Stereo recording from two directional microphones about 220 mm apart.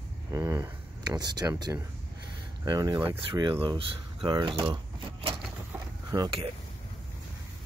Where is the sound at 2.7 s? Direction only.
20° right (ahead or behind).